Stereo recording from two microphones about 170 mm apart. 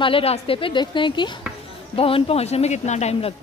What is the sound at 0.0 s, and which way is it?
Speech, 35° left (ahead or behind).